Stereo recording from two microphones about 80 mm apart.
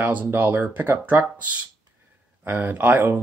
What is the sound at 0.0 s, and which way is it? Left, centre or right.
Speech, right.